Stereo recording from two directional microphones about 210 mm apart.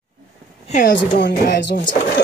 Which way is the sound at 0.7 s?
35° left (ahead or behind).